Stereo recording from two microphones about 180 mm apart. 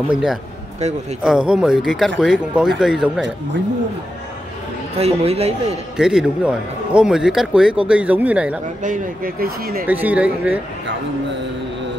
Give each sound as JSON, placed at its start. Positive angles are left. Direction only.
{"t": 0.1, "sound": "a man's voice", "side_deg": -5}
{"t": 4.9, "sound": "speech", "side_deg": -35}
{"t": 5.9, "sound": "a man's voice", "side_deg": -5}
{"t": 8.8, "sound": "speech", "side_deg": -50}
{"t": 9.8, "sound": "speech", "side_deg": -10}